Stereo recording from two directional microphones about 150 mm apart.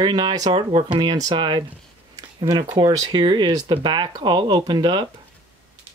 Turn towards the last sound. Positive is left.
turn(degrees=-30)  # may be behind; listen again after turning